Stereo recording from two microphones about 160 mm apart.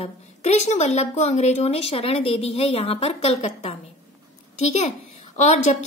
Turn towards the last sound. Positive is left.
turn(degrees=45)  # may be behind; listen again after turning